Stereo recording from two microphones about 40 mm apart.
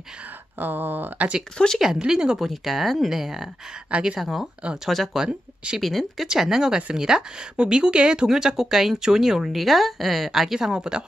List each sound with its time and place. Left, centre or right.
0.6 s a sound: right
1.6 s speech: left
2.0 s speech: centre
2.3 s speech: centre
5.1 s speech: centre
5.8 s speech: centre
6.2 s speech: centre
8.3 s speech: centre